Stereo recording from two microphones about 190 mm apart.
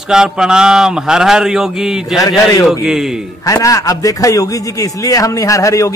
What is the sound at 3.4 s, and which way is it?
A man's voice, 15° left (ahead or behind).